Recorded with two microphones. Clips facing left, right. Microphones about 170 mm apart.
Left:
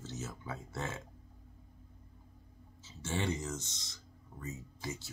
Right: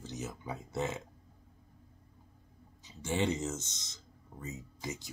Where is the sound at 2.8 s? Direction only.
15° right (ahead or behind).